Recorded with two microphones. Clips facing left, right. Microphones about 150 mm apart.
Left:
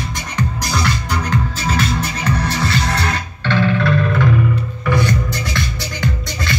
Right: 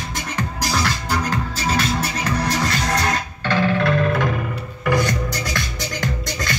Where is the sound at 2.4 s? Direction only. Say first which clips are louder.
Left 2 dB; 40° right (ahead or behind).